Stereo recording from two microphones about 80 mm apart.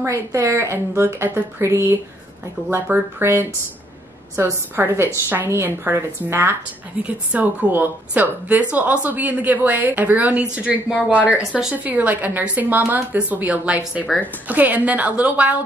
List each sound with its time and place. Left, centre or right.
0.0 s a woman's voice: right; by 15.6 s centre